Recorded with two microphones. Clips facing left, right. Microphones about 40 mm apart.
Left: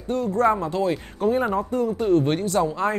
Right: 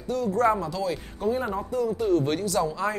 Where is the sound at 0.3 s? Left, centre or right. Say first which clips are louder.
Left 2 dB; left.